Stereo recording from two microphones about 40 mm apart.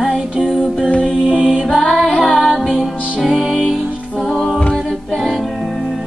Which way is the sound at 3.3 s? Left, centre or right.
Centre.